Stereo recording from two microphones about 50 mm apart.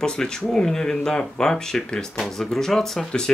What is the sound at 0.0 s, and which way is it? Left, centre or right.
Speech, centre.